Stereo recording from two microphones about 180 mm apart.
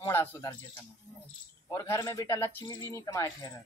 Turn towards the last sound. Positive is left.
turn(degrees=15)  # may be behind; listen again after turning